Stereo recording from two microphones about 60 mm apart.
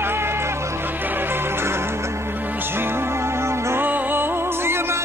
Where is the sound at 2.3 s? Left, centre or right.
Right.